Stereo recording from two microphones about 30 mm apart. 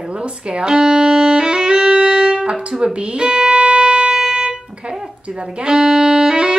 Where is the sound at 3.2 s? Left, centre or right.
Right.